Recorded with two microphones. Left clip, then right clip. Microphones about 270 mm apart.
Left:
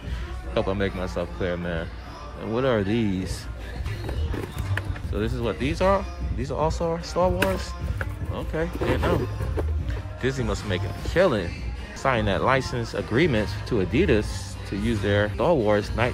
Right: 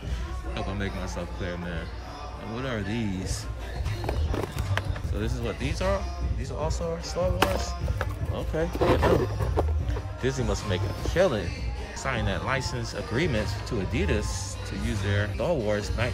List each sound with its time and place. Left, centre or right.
0.6 s speech: centre
5.1 s speech: centre
10.2 s speech: centre